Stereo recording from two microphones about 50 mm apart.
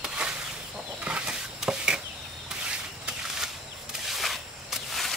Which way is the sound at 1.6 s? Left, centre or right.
Centre.